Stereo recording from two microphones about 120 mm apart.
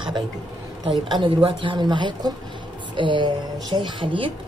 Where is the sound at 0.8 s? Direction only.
40° right (ahead or behind).